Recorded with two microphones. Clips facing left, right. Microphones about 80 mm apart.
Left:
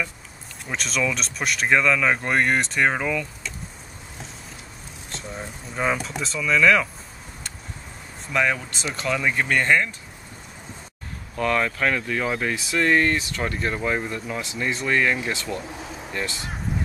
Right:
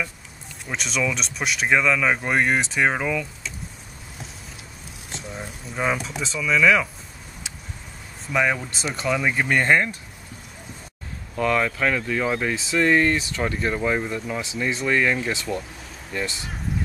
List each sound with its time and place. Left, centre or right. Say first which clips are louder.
0.7 s speech: even; centre
5.1 s speech: even; centre
8.3 s speech: right 1 dB; centre
11.3 s speech: right 1 dB; centre